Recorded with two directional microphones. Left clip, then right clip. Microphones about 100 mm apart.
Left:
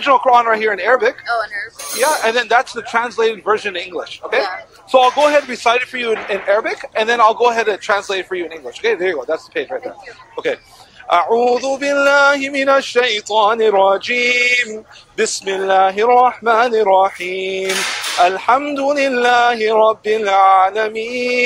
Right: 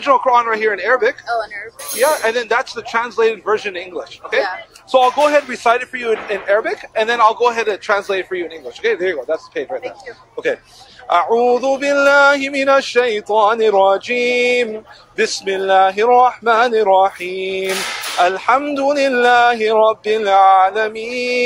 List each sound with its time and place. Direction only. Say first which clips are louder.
0.0 s speech: left 1 dB; 25° left (ahead or behind)
1.2 s speech: left 2 dB; 5° left (ahead or behind)
2.0 s speech: even; 30° left (ahead or behind)
11.1 s a sound: even; 15° left (ahead or behind)
15.1 s speech: even; 25° left (ahead or behind)
18.2 s a sound: left 1 dB; 15° left (ahead or behind)